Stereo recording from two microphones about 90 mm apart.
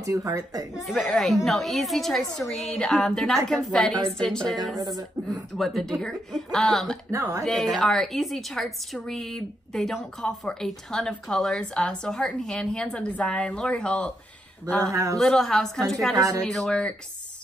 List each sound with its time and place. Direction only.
0.0 s speech: 40° right (ahead or behind)
0.8 s a woman's voice: centre (ahead or behind)
4.7 s speech: 45° right (ahead or behind)
5.5 s a woman's voice: centre (ahead or behind)
7.1 s speech: 35° right (ahead or behind)
7.4 s a woman's voice: centre (ahead or behind)
14.9 s speech: 40° right (ahead or behind)
15.1 s a woman's voice: 5° left (ahead or behind)